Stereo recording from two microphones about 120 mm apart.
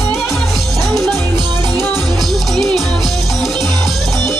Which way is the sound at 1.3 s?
35° right (ahead or behind).